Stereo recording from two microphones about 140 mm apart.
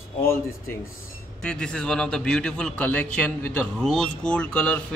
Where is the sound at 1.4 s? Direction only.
5° left (ahead or behind).